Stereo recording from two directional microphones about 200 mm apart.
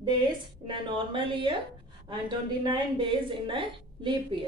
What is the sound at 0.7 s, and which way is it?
A woman's voice, 25° right (ahead or behind).